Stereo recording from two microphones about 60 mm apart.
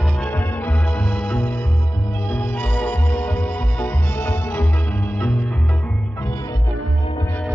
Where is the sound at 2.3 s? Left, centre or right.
Left.